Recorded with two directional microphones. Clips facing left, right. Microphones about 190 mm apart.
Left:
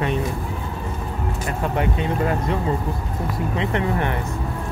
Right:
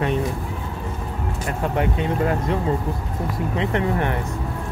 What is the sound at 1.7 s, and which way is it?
Speech, 50° right (ahead or behind).